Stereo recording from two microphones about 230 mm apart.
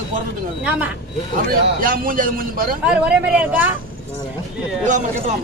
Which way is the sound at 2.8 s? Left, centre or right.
Centre.